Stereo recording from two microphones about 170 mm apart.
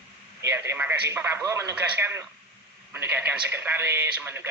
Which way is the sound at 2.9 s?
10° right (ahead or behind).